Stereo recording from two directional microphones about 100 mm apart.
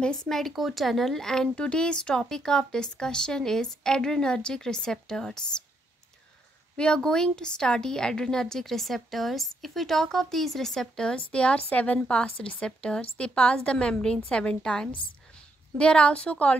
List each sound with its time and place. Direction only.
0.0 s a woman's voice: 5° left (ahead or behind)
6.8 s a woman's voice: 10° left (ahead or behind)